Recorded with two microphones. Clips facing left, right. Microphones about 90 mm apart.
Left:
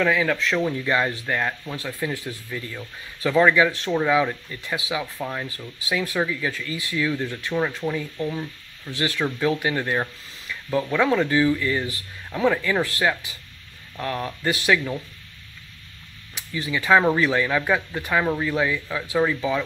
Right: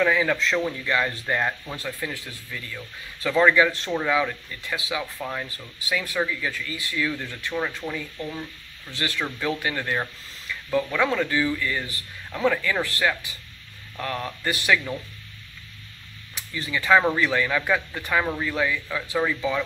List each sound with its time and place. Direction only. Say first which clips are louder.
0.0 s speech: even; 5° right (ahead or behind)
0.4 s speech: left 1 dB; 5° left (ahead or behind)
0.8 s speech: left 2 dB; 20° left (ahead or behind)
1.2 s speech: even; 5° right (ahead or behind)
1.8 s speech: left 3 dB; 10° left (ahead or behind)
4.1 s speech: left 3 dB; 15° left (ahead or behind)
5.2 s speech: left 2 dB; 5° left (ahead or behind)
16.3 s speech: left 2 dB; 15° left (ahead or behind)